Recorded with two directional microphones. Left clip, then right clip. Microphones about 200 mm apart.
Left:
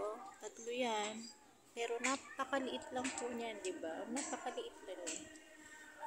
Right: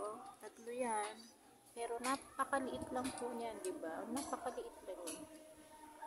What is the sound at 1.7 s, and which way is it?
Speech, 10° left (ahead or behind).